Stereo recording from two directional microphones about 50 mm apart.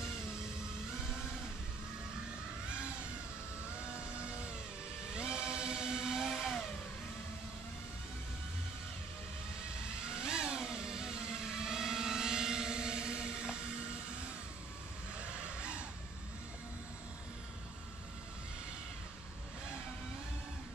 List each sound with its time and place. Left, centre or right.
2.7 s vehicle: right
5.1 s vehicle: centre
10.2 s vehicle: centre
15.1 s vehicle: right